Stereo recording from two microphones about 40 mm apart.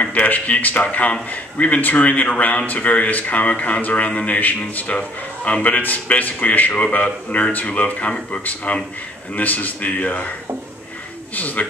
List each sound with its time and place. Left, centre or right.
0.0 s a man's voice: left
6.7 s a man's voice: left
11.3 s speech: left